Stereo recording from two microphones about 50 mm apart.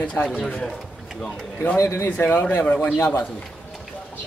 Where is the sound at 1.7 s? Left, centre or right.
Left.